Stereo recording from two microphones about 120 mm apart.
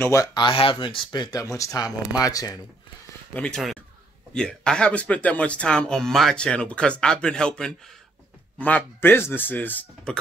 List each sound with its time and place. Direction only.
0.0 s speech: 25° left (ahead or behind)
0.3 s speech: 40° left (ahead or behind)
1.4 s speech: 25° left (ahead or behind)
3.3 s speech: 5° left (ahead or behind)